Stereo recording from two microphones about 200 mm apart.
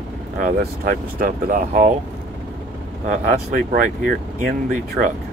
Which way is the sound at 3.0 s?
45° right (ahead or behind).